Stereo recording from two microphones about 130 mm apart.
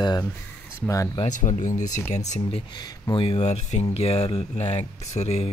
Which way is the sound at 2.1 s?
60° left (ahead or behind).